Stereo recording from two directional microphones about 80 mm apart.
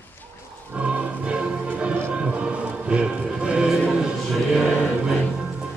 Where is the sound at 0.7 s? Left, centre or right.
Centre.